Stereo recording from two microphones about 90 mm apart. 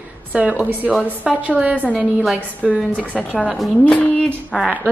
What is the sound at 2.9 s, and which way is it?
Speech, 15° left (ahead or behind).